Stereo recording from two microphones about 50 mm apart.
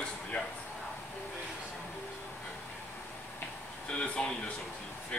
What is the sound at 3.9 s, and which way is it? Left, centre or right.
Speech, left.